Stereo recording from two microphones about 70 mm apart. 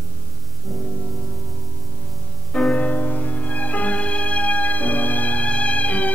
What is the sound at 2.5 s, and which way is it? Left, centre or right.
Music, centre.